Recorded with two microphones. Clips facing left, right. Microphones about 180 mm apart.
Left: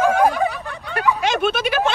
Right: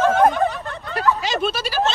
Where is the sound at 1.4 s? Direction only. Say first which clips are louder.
Left 1 dB; 60° left (ahead or behind).